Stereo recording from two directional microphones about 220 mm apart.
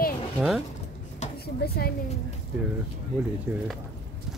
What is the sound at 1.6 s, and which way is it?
Speech, 45° left (ahead or behind).